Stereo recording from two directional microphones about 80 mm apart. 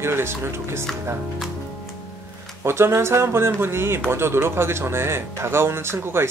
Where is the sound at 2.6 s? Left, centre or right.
Right.